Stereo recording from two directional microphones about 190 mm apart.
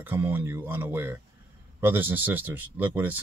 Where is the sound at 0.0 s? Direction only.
10° right (ahead or behind).